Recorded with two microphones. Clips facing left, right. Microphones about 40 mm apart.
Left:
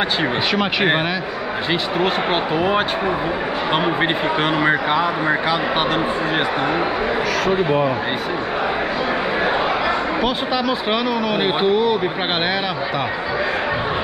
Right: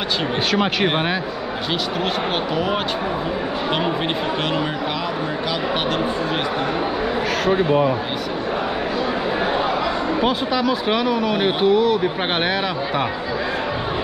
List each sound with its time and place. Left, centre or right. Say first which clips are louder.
3.7 s speech: left 4 dB; centre
10.7 s speech: even; centre
11.1 s speech: even; centre
11.3 s speech: even; centre